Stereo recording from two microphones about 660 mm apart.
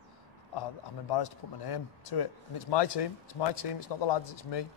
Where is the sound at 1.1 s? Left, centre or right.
Left.